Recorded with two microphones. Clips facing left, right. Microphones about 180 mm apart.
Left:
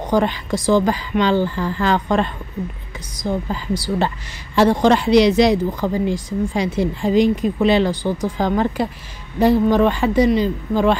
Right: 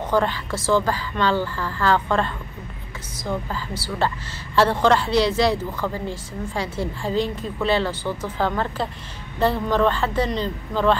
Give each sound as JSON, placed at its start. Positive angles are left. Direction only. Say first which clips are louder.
{"t": 0.1, "sound": "speech", "louder": "left 4 dB", "side_deg": 15}